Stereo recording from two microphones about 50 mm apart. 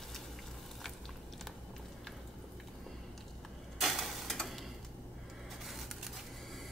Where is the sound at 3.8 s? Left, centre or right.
Centre.